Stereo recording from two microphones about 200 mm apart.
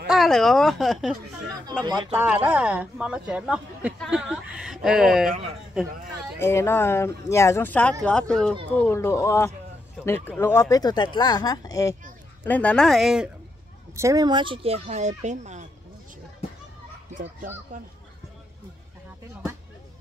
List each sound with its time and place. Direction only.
0.1 s speech: centre (ahead or behind)
1.9 s speech: 20° right (ahead or behind)
2.1 s speech: 10° right (ahead or behind)
6.4 s speech: 10° left (ahead or behind)
13.9 s speech: 15° right (ahead or behind); by 15.6 s 35° right (ahead or behind)